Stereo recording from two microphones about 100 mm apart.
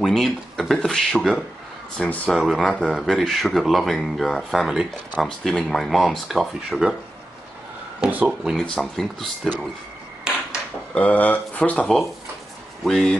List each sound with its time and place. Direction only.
0.0 s speech: 5° left (ahead or behind)
8.0 s speech: 15° right (ahead or behind)
8.3 s speech: centre (ahead or behind)
11.0 s speech: 15° left (ahead or behind)
12.8 s speech: centre (ahead or behind)